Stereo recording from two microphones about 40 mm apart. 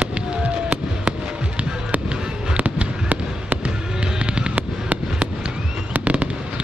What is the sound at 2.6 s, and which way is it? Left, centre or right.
Fireworks, right.